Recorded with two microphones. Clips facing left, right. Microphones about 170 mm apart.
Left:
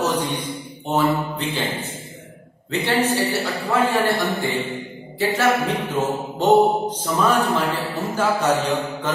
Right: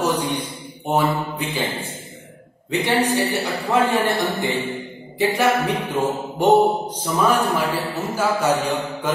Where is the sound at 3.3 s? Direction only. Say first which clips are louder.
Right 1 dB; 15° right (ahead or behind).